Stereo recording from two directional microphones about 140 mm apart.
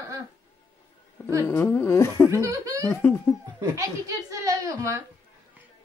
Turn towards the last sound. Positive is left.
turn(degrees=-25)  # may be behind; listen again after turning